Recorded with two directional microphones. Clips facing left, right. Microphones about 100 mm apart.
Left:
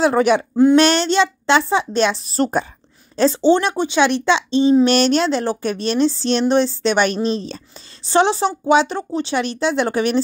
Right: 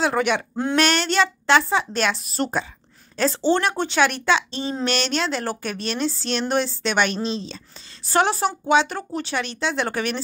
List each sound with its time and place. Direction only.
0.0 s a woman's voice: 35° left (ahead or behind)
3.2 s a woman's voice: 20° left (ahead or behind)
4.8 s a woman's voice: 35° left (ahead or behind)
7.2 s speech: 45° left (ahead or behind)
8.0 s a woman's voice: 25° left (ahead or behind)